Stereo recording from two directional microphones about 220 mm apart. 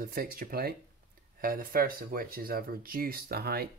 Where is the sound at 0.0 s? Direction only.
40° right (ahead or behind).